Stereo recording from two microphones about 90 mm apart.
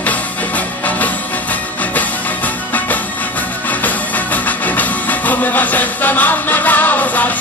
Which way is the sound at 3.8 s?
20° left (ahead or behind).